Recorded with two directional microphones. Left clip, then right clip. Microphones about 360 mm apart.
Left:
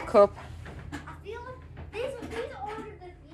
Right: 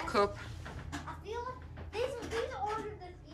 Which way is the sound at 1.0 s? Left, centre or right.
Right.